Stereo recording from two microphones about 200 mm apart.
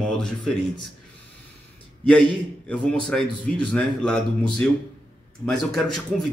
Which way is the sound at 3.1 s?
5° left (ahead or behind).